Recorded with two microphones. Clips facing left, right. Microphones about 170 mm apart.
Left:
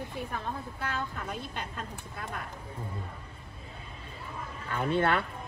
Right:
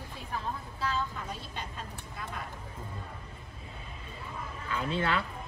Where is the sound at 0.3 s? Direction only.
60° left (ahead or behind).